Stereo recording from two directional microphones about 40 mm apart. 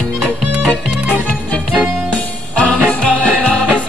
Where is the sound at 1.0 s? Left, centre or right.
Right.